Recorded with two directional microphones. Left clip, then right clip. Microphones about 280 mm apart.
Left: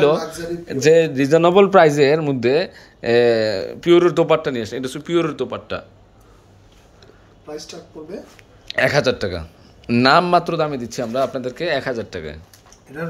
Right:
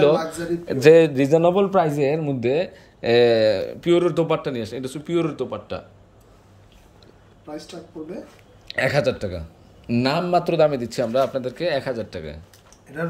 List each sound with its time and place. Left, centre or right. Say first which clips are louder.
0.0 s speech: left 1 dB; centre
1.4 s a man's voice: left 6 dB; left
1.9 s speech: left 7 dB; centre
8.6 s speech: left 4 dB; centre